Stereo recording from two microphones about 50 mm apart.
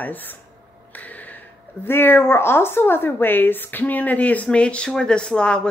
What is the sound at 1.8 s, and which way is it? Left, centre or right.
Speech, left.